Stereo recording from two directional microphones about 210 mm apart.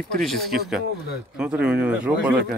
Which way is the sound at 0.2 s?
Centre (ahead or behind).